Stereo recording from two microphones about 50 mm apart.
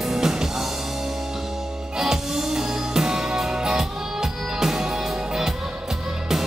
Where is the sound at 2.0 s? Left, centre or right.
Centre.